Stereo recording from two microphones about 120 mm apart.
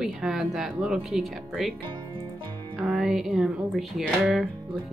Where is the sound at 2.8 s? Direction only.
5° right (ahead or behind).